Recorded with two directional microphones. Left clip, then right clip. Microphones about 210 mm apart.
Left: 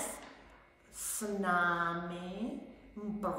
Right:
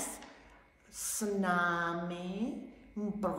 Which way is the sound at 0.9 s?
20° right (ahead or behind).